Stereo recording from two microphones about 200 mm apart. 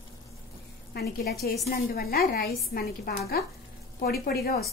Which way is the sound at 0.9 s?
50° left (ahead or behind).